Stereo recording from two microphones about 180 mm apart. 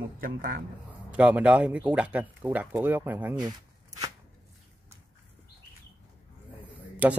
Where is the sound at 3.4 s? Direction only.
20° right (ahead or behind).